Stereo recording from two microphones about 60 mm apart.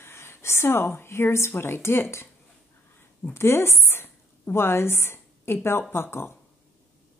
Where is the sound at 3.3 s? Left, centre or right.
Left.